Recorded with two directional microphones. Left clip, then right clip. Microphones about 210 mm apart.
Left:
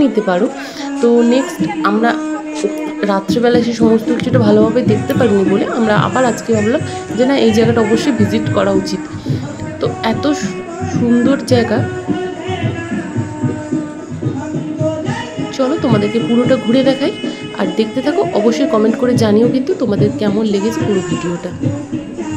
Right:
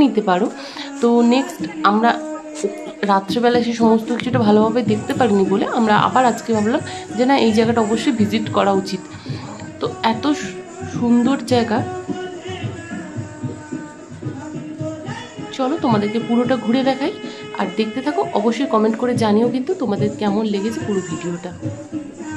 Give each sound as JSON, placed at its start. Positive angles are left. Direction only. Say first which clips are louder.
{"t": 0.0, "sound": "speech", "louder": "left 3 dB", "side_deg": 10}
{"t": 15.5, "sound": "speech", "louder": "left 4 dB", "side_deg": 15}